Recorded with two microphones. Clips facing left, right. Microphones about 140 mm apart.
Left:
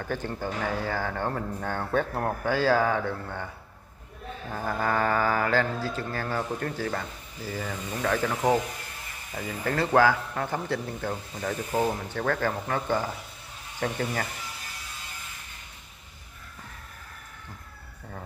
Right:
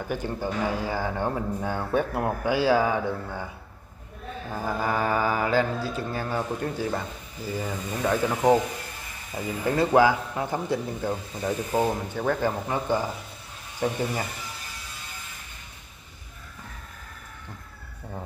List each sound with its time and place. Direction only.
0.0 s speech: 10° right (ahead or behind)
4.5 s speech: 10° right (ahead or behind)